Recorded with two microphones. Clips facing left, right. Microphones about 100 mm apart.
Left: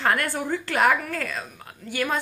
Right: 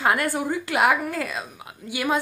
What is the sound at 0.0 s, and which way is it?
A woman's voice, 15° right (ahead or behind).